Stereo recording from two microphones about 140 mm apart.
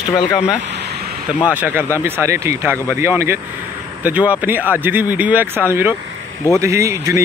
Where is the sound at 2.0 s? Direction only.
15° right (ahead or behind).